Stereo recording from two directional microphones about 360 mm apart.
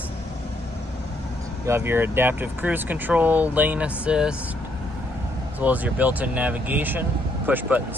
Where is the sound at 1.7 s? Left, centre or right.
Centre.